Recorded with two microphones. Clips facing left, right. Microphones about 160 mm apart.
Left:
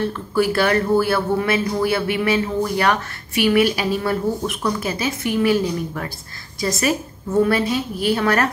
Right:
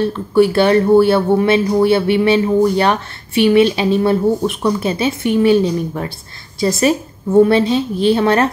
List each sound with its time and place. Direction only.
0.0 s speech: 25° right (ahead or behind)